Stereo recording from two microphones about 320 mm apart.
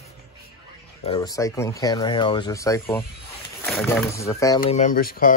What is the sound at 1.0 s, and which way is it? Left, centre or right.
Speech, centre.